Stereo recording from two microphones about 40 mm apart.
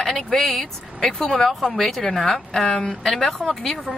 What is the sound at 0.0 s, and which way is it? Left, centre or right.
Speech, centre.